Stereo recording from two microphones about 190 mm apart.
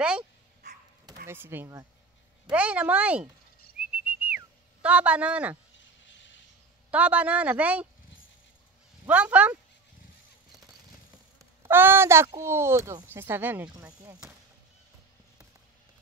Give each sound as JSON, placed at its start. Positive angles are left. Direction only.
{"t": 1.2, "sound": "speech", "side_deg": -10}
{"t": 3.9, "sound": "whistling", "side_deg": -5}
{"t": 4.8, "sound": "speech", "side_deg": -5}
{"t": 6.0, "sound": "a sound", "side_deg": 75}
{"t": 6.9, "sound": "speech", "side_deg": -5}
{"t": 9.0, "sound": "speech", "side_deg": -5}
{"t": 11.3, "sound": "a sound", "side_deg": -15}
{"t": 12.4, "sound": "speech", "side_deg": -15}